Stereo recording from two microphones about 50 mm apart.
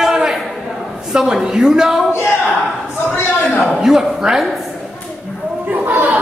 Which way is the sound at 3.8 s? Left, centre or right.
Centre.